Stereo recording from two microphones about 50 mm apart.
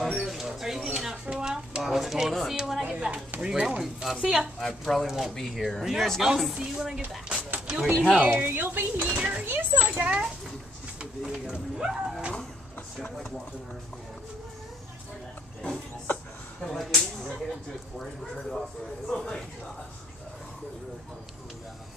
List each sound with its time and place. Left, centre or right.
0.0 s a sound: centre
2.6 s speech: centre
2.9 s a child's voice: right
3.8 s speech: centre
8.3 s a child's voice: right
9.0 s a child's voice: right
9.4 s a child's voice: right
11.0 s speech: centre
16.6 s speech: centre
19.0 s a sound: centre